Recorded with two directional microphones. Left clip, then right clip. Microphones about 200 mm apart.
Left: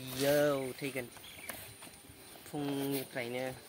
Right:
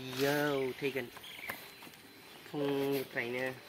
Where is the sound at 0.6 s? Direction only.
45° left (ahead or behind).